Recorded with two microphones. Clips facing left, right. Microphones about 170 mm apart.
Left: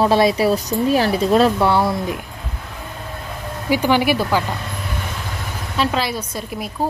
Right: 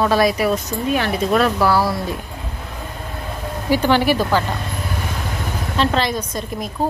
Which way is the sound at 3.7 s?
10° left (ahead or behind).